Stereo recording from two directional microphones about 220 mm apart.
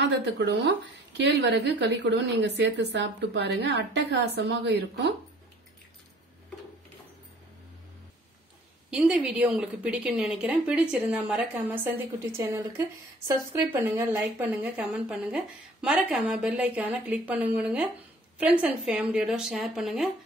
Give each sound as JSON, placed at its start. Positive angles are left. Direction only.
{"t": 0.0, "sound": "speech", "side_deg": -55}
{"t": 8.9, "sound": "speech", "side_deg": -5}